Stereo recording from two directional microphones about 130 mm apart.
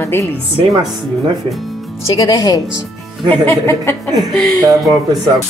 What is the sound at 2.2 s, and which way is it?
Speech, 30° left (ahead or behind).